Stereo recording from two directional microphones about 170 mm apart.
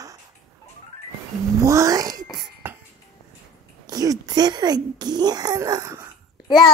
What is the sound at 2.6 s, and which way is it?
Music, 10° right (ahead or behind).